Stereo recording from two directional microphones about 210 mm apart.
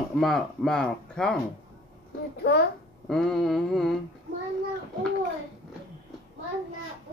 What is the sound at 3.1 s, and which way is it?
Speech, centre (ahead or behind).